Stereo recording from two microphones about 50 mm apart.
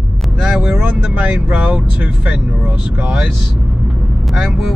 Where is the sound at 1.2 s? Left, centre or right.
Centre.